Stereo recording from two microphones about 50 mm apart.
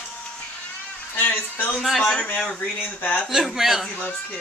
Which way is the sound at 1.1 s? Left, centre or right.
Left.